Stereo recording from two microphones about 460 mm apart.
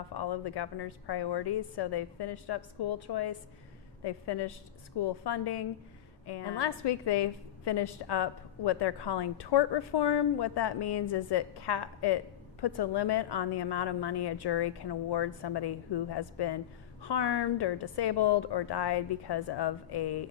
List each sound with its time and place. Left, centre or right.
0.1 s a woman's voice: left